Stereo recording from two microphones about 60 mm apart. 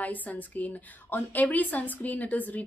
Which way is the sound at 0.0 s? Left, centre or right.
Left.